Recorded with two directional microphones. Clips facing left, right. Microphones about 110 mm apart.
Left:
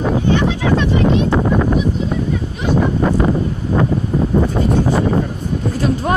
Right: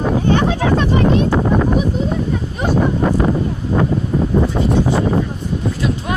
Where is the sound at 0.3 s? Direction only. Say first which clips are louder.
Right 1 dB; 45° right (ahead or behind).